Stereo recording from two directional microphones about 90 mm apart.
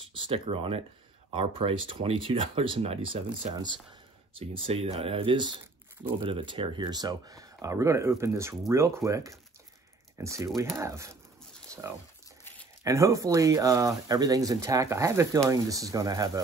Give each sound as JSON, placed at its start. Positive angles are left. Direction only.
{"t": 0.1, "sound": "speech", "side_deg": -80}
{"t": 4.4, "sound": "speech", "side_deg": -90}
{"t": 6.2, "sound": "speech", "side_deg": -75}
{"t": 12.8, "sound": "speech", "side_deg": -35}